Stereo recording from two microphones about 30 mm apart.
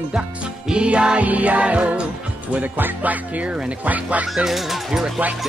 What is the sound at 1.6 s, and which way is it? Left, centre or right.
Music, right.